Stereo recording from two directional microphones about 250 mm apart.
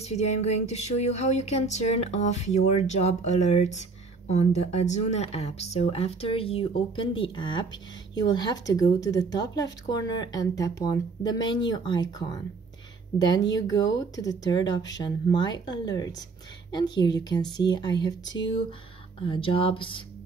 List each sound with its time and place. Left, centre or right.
0.0 s a woman's voice: left
13.5 s a woman's voice: centre